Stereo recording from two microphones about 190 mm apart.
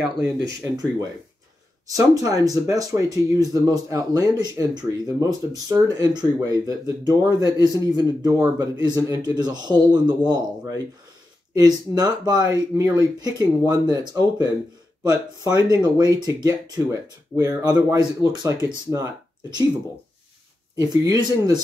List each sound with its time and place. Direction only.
0.7 s speech: 20° right (ahead or behind)
20.7 s speech: 20° right (ahead or behind)